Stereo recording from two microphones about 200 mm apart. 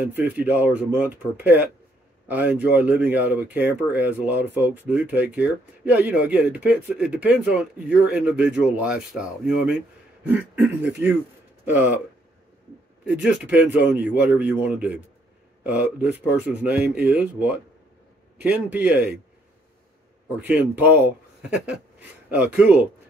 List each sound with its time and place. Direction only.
0.0 s speech: 10° right (ahead or behind)
13.0 s speech: 5° right (ahead or behind)
20.3 s speech: 10° right (ahead or behind)